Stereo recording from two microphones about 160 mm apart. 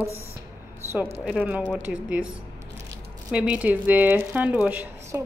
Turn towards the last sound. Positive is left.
turn(degrees=-10)  # may be behind; listen again after turning